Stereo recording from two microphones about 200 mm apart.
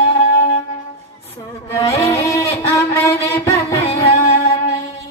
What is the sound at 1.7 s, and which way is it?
Music, 15° left (ahead or behind).